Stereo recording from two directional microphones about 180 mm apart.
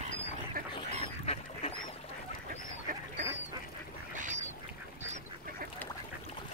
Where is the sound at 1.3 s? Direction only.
35° left (ahead or behind).